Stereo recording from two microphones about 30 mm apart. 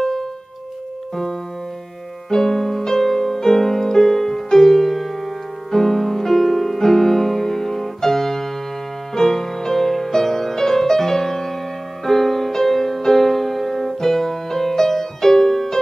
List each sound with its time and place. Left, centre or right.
0.0 s music: centre
2.2 s music: centre